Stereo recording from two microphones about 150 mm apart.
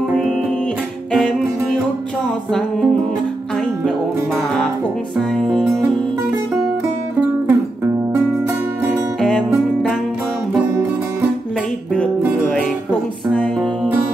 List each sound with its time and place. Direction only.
5.1 s music: centre (ahead or behind)
7.2 s music: 10° right (ahead or behind)
9.2 s music: 5° left (ahead or behind)
10.7 s music: 20° right (ahead or behind)
13.6 s music: 10° right (ahead or behind)